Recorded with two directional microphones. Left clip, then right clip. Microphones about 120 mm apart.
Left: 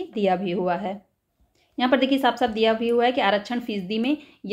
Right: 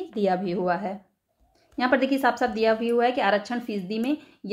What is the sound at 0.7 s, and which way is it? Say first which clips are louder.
A woman's voice: left 1 dB; 40° left (ahead or behind).